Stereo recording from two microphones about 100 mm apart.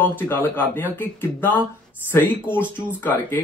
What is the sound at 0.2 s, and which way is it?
Speech, 20° left (ahead or behind).